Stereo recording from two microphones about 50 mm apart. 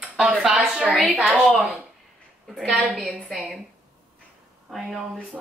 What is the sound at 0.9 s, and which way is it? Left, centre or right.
Speech, centre.